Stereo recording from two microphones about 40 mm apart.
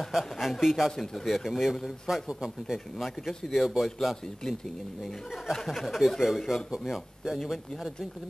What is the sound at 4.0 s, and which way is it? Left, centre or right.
Speech, centre.